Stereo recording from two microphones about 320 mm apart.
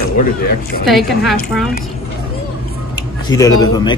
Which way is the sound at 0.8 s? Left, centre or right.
Centre.